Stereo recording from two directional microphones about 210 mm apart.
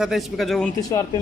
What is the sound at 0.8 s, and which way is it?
Speech, 15° left (ahead or behind).